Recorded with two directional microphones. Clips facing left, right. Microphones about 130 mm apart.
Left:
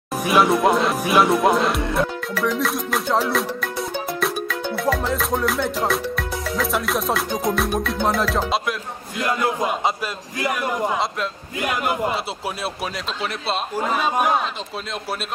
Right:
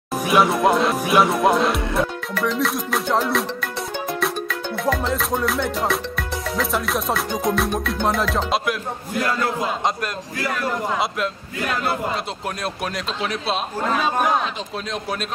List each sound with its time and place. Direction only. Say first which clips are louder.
0.1 s music: left 1 dB; centre (ahead or behind)
9.2 s a man's voice: left 2 dB; 15° left (ahead or behind)
12.6 s music: right 3 dB; centre (ahead or behind)